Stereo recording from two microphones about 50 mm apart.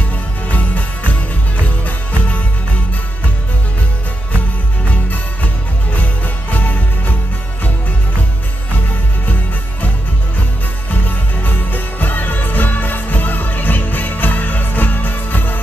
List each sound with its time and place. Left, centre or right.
0.5 s jingle bell: left
1.6 s music: left
4.8 s music: left
5.9 s jingle bell: left
10.9 s music: left